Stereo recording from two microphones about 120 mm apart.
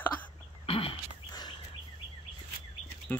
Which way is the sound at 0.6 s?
50° left (ahead or behind).